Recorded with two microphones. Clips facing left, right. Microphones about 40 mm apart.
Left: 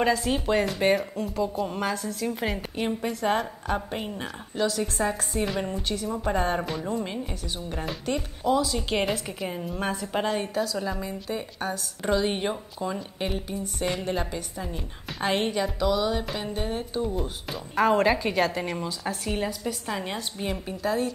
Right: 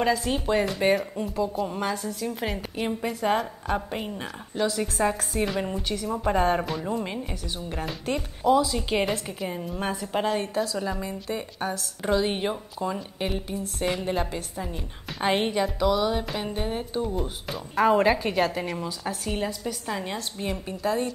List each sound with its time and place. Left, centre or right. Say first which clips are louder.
0.0 s a woman's voice: even; centre